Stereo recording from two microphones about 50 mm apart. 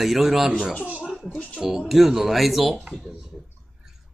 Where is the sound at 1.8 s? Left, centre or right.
Centre.